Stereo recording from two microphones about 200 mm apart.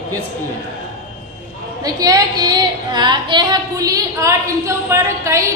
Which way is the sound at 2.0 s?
20° right (ahead or behind).